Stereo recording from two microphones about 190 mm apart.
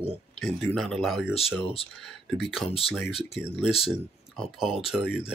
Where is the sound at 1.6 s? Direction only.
30° left (ahead or behind).